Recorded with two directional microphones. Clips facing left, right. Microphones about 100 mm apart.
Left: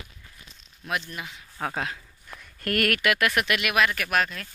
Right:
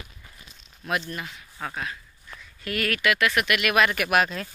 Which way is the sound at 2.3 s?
50° left (ahead or behind).